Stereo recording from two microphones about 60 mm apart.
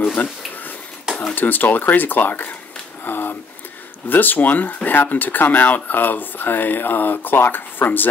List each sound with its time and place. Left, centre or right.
0.2 s speech: left
3.1 s a sound: left
4.1 s speech: left